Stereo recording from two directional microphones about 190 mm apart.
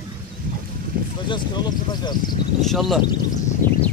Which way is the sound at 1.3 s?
25° left (ahead or behind).